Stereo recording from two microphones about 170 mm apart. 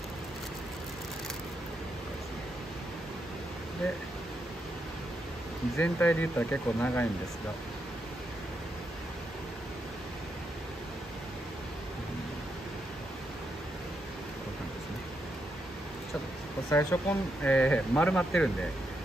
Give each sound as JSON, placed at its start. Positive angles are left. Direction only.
{"t": 5.8, "sound": "speech", "side_deg": 10}
{"t": 16.7, "sound": "speech", "side_deg": 10}